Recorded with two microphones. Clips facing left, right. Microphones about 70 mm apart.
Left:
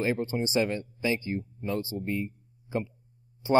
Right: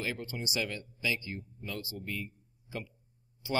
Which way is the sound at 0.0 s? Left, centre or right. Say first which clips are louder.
Left 9 dB; left.